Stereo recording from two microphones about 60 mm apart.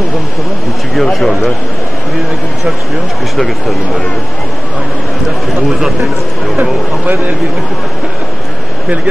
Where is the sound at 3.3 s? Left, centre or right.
Centre.